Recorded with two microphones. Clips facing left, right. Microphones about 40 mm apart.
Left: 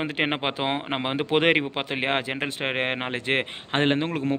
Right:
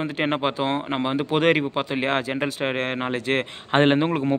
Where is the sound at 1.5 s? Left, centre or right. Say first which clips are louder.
Right 2 dB; left.